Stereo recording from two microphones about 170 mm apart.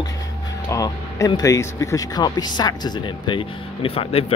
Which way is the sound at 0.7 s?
20° left (ahead or behind).